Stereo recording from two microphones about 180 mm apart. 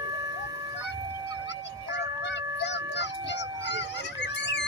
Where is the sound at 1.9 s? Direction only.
75° left (ahead or behind).